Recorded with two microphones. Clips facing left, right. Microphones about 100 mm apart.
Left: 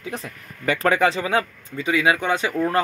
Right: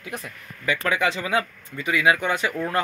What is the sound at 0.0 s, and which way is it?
Speech, 30° left (ahead or behind).